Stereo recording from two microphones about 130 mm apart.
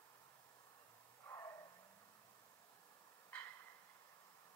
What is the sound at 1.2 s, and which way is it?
Bow-wow, 20° left (ahead or behind).